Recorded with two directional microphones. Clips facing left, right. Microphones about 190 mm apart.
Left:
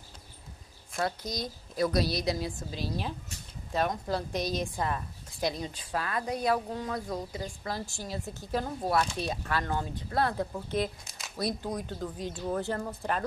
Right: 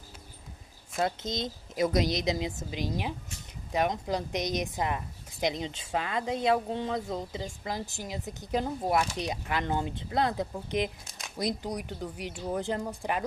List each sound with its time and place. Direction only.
0.9 s a woman's voice: 25° right (ahead or behind)